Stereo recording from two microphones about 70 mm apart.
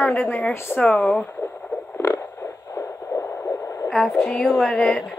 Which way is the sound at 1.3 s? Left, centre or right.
Left.